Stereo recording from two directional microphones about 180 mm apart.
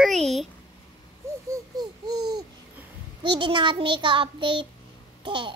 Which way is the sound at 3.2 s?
25° right (ahead or behind).